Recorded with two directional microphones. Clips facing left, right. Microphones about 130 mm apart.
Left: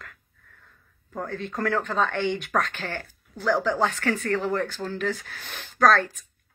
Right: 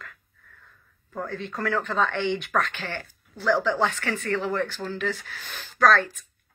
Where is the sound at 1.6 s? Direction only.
45° left (ahead or behind).